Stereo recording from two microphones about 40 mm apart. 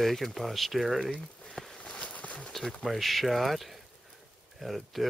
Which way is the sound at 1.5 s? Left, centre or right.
Centre.